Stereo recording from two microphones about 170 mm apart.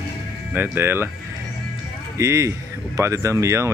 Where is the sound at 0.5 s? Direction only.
10° right (ahead or behind).